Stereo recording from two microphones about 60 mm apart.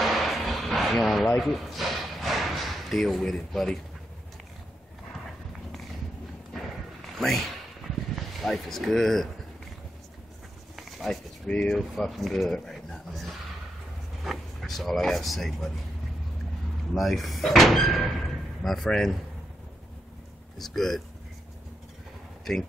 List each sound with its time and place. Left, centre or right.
0.0 s a sound: centre
3.5 s a man's voice: centre
7.2 s speech: centre
10.8 s a sound: centre
11.4 s a man's voice: centre
11.7 s speech: centre
16.9 s a man's voice: centre
20.5 s speech: centre
22.4 s speech: centre